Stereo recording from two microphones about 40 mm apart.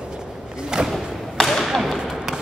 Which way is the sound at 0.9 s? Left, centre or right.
Centre.